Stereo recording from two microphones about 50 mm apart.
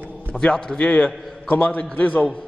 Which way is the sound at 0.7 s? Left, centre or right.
Left.